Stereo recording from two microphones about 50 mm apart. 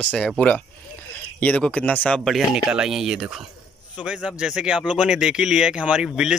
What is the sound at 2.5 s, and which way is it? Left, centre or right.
Speech, centre.